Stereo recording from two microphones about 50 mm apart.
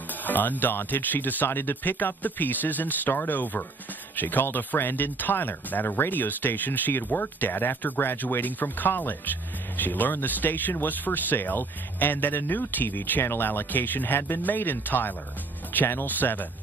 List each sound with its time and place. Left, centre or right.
0.2 s speech: left